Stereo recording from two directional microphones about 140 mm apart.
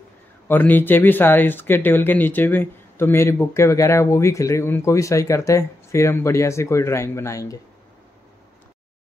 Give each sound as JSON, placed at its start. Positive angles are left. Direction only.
{"t": 0.5, "sound": "speech", "side_deg": 15}